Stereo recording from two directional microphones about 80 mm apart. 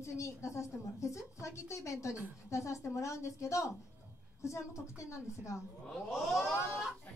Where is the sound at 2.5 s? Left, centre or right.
Left.